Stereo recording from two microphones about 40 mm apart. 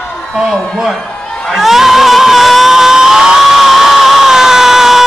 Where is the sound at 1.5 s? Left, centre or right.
Centre.